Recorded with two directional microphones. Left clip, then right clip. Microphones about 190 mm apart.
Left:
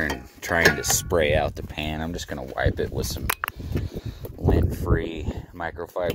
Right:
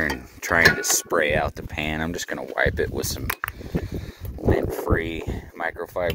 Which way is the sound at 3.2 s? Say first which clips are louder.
Left 1 dB; 55° left (ahead or behind).